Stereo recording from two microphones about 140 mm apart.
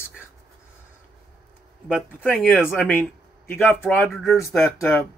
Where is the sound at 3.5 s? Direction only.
15° left (ahead or behind).